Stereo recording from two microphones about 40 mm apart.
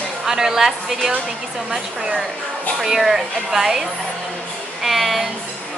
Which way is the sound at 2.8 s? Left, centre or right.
Centre.